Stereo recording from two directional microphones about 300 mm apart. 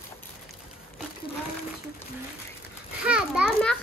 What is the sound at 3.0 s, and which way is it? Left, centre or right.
Children playing, centre.